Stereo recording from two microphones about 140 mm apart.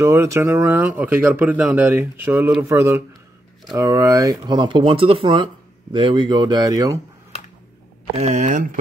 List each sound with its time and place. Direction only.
0.0 s speech: 20° right (ahead or behind)
8.2 s speech: 55° right (ahead or behind)